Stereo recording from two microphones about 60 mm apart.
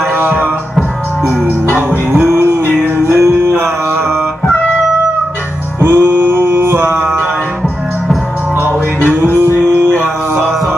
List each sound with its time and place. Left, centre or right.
0.1 s music: right
2.1 s music: right
5.8 s music: right
9.1 s music: right